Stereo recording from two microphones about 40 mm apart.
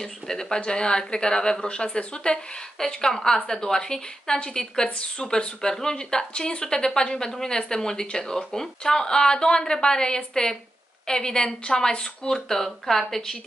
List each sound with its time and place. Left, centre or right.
0.0 s a woman's voice: centre
2.3 s a woman's voice: centre